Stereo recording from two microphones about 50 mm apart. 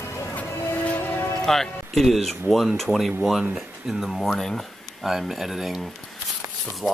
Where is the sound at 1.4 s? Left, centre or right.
Centre.